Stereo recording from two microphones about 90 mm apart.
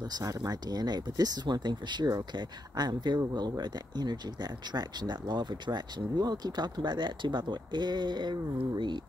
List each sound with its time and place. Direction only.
0.1 s speech: 45° right (ahead or behind)